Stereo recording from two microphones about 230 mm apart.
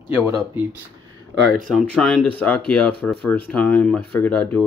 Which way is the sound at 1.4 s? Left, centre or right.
Right.